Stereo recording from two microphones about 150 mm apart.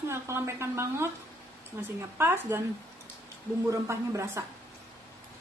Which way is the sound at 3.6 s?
20° right (ahead or behind).